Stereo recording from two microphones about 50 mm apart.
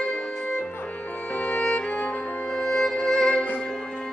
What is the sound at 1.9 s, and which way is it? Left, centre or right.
Music, left.